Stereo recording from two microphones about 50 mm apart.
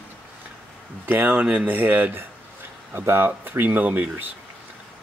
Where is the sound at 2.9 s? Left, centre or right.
Right.